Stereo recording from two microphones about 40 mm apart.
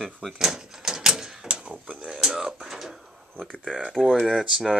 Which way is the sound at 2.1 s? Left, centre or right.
Centre.